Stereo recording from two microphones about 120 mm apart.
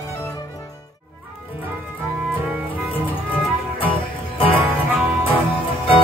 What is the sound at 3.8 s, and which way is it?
Music, 50° left (ahead or behind).